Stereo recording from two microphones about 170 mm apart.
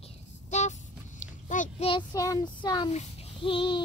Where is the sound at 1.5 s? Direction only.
50° left (ahead or behind).